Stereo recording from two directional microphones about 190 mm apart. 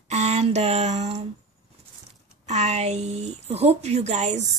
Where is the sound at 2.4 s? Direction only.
35° right (ahead or behind).